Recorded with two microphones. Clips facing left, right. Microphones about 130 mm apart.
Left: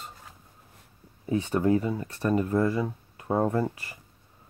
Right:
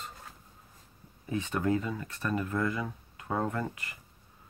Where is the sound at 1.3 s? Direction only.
30° left (ahead or behind).